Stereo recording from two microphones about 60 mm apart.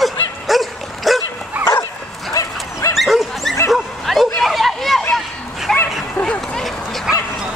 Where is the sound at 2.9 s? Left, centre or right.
Centre.